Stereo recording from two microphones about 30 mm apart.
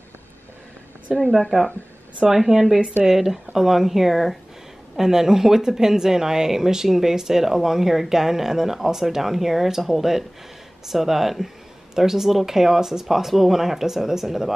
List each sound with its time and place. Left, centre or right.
1.1 s speech: right
2.3 s speech: centre
4.9 s speech: centre